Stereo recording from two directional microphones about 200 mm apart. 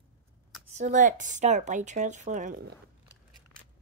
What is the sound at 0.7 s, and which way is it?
Speech, 35° right (ahead or behind).